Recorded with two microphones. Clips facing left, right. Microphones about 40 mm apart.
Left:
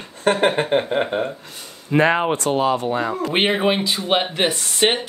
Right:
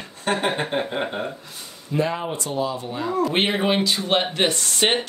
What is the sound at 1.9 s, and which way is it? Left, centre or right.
Speech, left.